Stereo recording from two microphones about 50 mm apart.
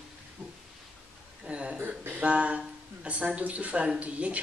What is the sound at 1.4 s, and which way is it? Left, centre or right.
A woman's voice, right.